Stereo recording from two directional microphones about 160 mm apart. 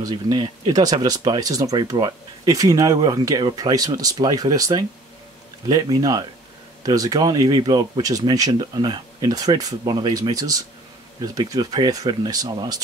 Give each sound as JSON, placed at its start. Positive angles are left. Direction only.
{"t": 0.0, "sound": "speech", "side_deg": -25}